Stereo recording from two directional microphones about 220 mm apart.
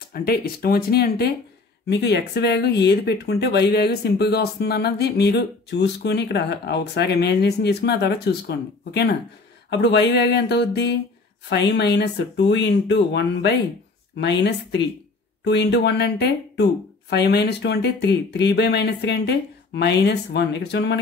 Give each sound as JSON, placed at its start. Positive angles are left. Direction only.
{"t": 0.1, "sound": "speech", "side_deg": 45}